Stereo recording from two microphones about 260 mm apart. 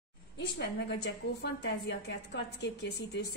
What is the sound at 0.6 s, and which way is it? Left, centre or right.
A woman's voice, left.